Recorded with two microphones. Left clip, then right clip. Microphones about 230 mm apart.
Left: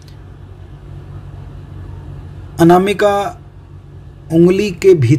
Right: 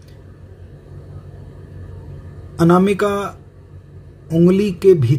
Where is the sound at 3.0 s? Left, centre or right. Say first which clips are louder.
Left 6 dB; left.